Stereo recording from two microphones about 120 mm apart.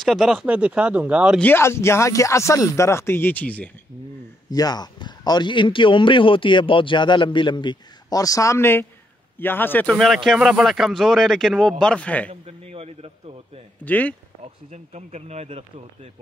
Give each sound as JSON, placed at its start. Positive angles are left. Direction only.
{"t": 0.0, "sound": "speech", "side_deg": 0}
{"t": 1.4, "sound": "speech", "side_deg": 20}
{"t": 4.5, "sound": "a man's voice", "side_deg": 35}
{"t": 9.8, "sound": "a man's voice", "side_deg": 0}
{"t": 12.3, "sound": "speech", "side_deg": -55}
{"t": 13.8, "sound": "a man's voice", "side_deg": 15}
{"t": 14.7, "sound": "speech", "side_deg": -70}